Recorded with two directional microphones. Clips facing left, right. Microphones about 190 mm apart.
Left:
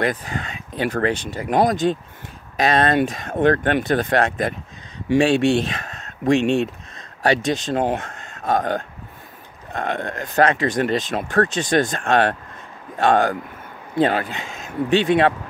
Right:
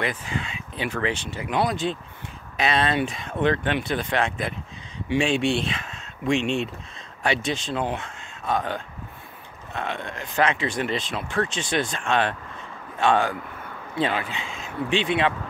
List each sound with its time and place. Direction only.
0.0 s speech: 40° left (ahead or behind)